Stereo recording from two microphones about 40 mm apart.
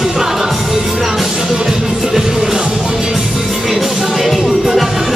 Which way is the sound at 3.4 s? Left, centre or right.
Centre.